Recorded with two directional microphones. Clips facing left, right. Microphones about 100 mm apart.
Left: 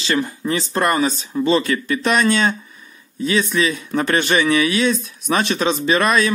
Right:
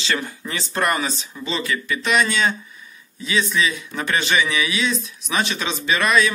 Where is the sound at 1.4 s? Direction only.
50° left (ahead or behind).